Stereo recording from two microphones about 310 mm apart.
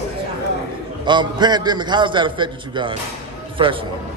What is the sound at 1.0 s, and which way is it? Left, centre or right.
A man's voice, centre.